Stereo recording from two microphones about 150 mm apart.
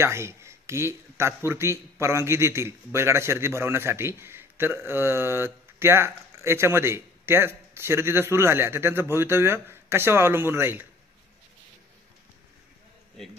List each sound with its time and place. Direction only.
0.0 s speech: 20° right (ahead or behind)